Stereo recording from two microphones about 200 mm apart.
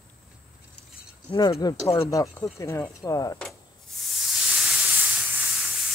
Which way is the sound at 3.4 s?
Centre (ahead or behind).